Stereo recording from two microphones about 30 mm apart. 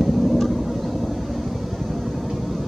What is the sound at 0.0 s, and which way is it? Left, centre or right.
Vehicle, centre.